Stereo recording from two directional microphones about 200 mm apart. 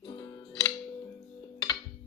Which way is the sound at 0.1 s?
15° left (ahead or behind).